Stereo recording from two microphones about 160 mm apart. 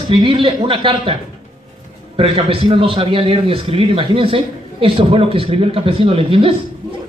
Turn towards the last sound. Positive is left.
turn(degrees=-35)  # may be behind; listen again after turning